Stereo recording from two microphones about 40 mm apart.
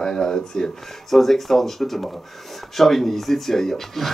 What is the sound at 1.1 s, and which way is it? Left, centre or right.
A man's voice, centre.